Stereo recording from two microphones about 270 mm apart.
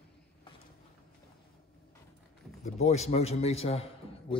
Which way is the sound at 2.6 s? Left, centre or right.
Left.